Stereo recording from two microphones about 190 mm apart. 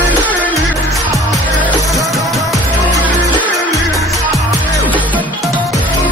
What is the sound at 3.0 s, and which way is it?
Music, 10° left (ahead or behind).